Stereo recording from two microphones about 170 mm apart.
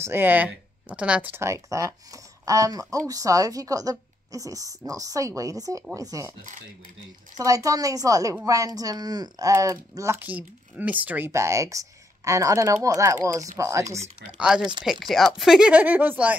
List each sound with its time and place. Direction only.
0.0 s speech: 10° right (ahead or behind)
7.3 s speech: 20° right (ahead or behind)
14.3 s speech: 5° right (ahead or behind)